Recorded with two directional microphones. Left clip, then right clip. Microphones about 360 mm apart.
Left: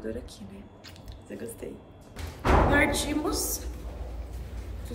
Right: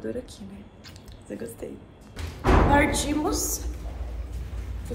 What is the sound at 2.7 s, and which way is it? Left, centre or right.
Speech, centre.